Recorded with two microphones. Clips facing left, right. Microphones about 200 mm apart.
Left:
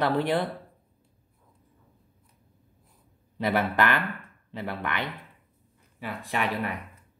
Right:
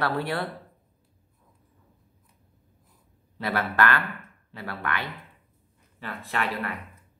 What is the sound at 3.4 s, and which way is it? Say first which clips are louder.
Speech: left 1 dB; 15° left (ahead or behind).